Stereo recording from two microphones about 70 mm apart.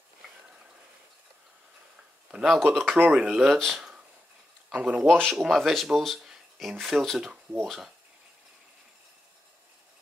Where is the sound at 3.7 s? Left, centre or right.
Centre.